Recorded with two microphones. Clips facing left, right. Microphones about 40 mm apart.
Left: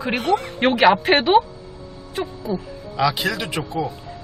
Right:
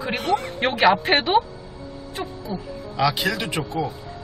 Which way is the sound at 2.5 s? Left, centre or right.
Centre.